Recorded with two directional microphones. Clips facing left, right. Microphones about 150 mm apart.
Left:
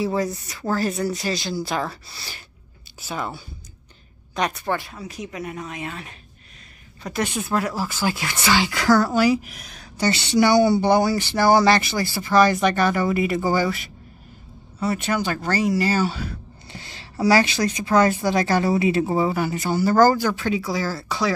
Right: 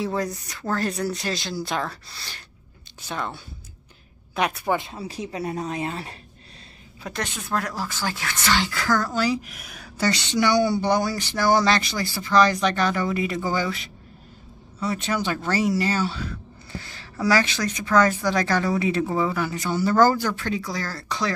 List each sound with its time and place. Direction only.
0.0 s speech: centre (ahead or behind)
4.7 s speech: 25° right (ahead or behind)
7.1 s speech: 10° left (ahead or behind); by 9.8 s 5° right (ahead or behind)
10.1 s speech: 10° left (ahead or behind)
10.6 s speech: 65° left (ahead or behind)
11.6 s speech: 5° left (ahead or behind)
16.7 s a sound: 20° left (ahead or behind)
17.2 s speech: 30° left (ahead or behind)
19.3 s speech: 5° left (ahead or behind)